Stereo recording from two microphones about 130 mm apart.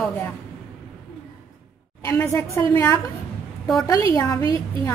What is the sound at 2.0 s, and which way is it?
A woman's voice, 20° left (ahead or behind).